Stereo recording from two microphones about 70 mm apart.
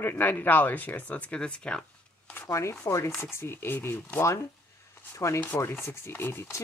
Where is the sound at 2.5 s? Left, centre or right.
Left.